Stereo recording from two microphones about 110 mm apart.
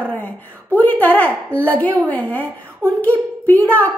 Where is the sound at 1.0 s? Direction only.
15° left (ahead or behind).